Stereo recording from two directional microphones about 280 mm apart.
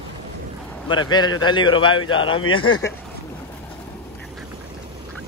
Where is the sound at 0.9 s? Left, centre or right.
Centre.